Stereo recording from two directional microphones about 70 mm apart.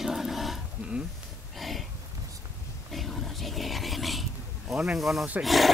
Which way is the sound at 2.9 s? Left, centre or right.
Centre.